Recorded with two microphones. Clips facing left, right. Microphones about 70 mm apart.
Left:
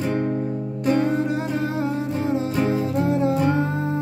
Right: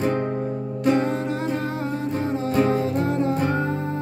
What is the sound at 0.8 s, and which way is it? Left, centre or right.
Music, right.